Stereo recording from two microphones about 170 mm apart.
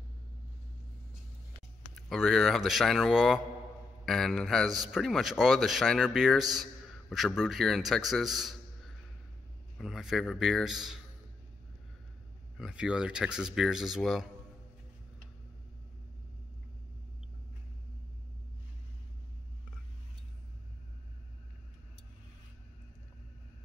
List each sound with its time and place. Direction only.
2.0 s speech: centre (ahead or behind)
12.5 s speech: 5° right (ahead or behind)